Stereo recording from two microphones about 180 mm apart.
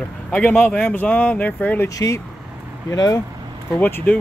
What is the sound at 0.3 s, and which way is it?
Speech, 5° left (ahead or behind).